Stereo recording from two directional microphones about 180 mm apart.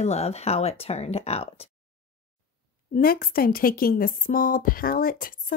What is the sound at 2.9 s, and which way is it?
A woman's voice, 55° left (ahead or behind).